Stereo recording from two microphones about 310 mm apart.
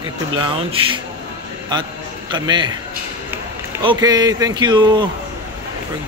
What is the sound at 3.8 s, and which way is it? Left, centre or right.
Speech, centre.